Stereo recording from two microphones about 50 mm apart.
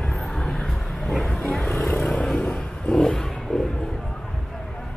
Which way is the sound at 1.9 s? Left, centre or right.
Left.